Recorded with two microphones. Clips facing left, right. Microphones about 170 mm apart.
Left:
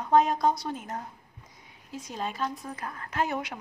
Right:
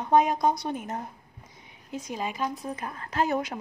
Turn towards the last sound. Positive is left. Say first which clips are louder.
# right 3 dB
turn(degrees=-40)  # may be behind; listen again after turning